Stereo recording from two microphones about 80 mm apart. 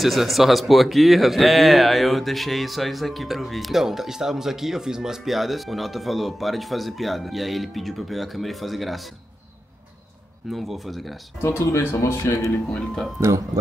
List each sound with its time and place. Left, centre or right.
0.0 s a man's voice: centre
10.5 s a man's voice: centre
11.4 s speech: left
12.4 s speech: centre